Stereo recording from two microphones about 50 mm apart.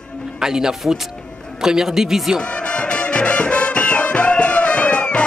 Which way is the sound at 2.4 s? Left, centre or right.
Left.